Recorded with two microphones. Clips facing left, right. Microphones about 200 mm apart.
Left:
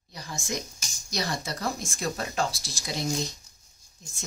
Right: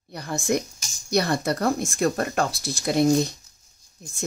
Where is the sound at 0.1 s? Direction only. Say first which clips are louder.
Right 10 dB; 60° right (ahead or behind).